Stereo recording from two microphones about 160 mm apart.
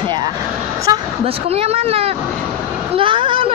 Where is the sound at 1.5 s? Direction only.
40° right (ahead or behind).